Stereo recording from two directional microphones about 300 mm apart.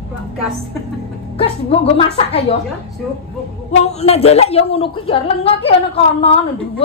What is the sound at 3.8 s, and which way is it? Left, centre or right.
A woman's voice, left.